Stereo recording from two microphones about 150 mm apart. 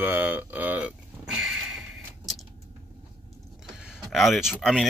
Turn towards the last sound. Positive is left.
turn(degrees=0)  # may be behind; listen again after turning